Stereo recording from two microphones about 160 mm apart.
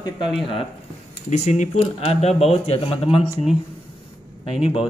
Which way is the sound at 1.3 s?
50° left (ahead or behind).